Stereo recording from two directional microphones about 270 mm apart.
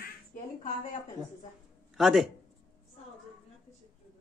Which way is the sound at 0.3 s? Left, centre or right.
Left.